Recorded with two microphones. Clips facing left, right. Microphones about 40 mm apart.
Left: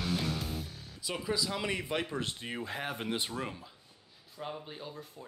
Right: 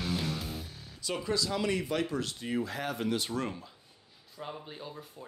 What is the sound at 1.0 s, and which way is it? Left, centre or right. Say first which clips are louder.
Speech: right 2 dB; centre.